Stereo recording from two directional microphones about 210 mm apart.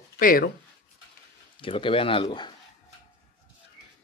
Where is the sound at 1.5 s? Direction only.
25° left (ahead or behind).